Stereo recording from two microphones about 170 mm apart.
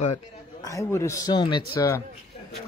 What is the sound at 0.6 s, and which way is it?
A man's voice, 20° left (ahead or behind).